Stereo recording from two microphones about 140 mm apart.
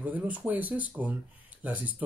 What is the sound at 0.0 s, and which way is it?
Speech, 10° right (ahead or behind).